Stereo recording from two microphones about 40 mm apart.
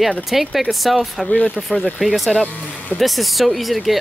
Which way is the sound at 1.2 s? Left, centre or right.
Left.